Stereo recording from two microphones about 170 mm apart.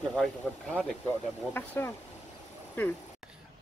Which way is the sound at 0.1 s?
5° left (ahead or behind).